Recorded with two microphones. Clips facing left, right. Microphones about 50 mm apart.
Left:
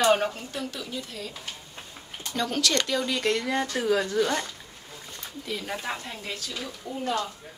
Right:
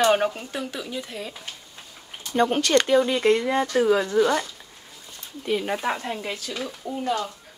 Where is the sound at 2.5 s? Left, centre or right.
Right.